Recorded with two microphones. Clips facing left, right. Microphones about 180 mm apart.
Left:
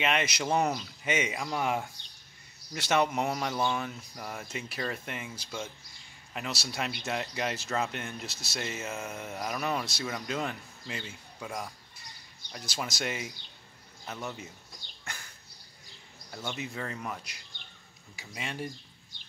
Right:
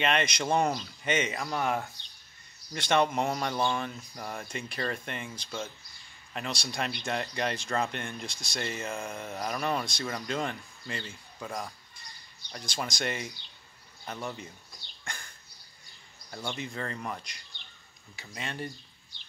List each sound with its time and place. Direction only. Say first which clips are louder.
0.0 s speech: right 1 dB; 5° left (ahead or behind)
15.0 s bird: right 1 dB; 5° left (ahead or behind)
16.3 s speech: right 1 dB; 5° left (ahead or behind)
17.6 s bird: left 2 dB; 50° left (ahead or behind)
18.1 s speech: even; 10° left (ahead or behind)